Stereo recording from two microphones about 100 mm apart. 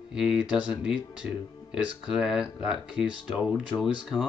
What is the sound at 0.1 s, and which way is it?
Speech, 5° right (ahead or behind).